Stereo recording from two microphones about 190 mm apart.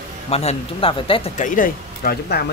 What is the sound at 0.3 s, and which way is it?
Speech, 35° left (ahead or behind).